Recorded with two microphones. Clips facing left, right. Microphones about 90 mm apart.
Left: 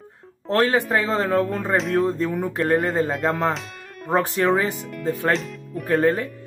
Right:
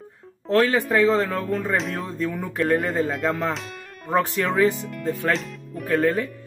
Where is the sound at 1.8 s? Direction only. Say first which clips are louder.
Left 7 dB; centre (ahead or behind).